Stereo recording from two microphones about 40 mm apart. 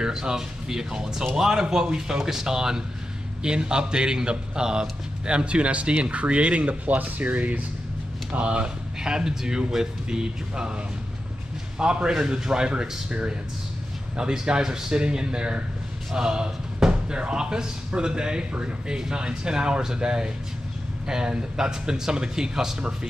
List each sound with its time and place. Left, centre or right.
0.1 s a man's voice: centre
11.8 s a man's voice: right
14.1 s a man's voice: right
16.2 s music: centre
17.2 s a man's voice: right